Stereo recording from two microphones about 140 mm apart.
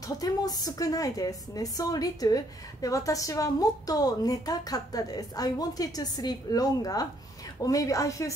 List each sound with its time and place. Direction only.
0.2 s a woman's voice: 25° left (ahead or behind)